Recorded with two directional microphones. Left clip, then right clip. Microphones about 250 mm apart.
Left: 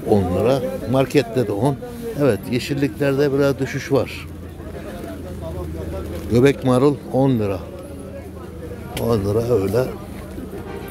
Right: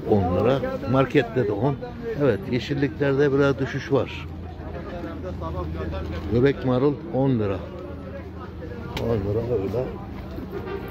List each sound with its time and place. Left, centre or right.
0.1 s speech: centre
6.3 s a man's voice: left
9.1 s a man's voice: left